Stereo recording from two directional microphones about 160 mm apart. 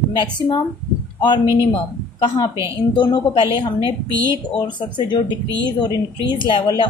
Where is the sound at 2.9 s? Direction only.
30° left (ahead or behind).